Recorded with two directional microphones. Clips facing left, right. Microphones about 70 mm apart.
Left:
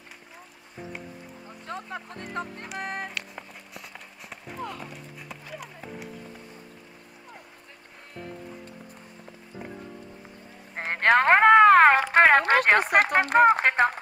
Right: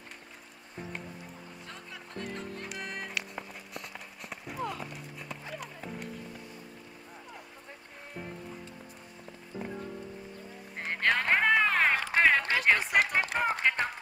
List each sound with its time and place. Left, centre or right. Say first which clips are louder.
1.7 s music: left 12 dB; left
3.2 s clip-clop: even; centre
9.6 s music: right 1 dB; centre
10.8 s clip-clop: left 8 dB; left
12.1 s a sound: left 7 dB; left